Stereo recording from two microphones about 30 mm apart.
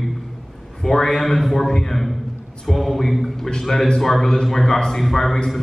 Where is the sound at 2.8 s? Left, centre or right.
Centre.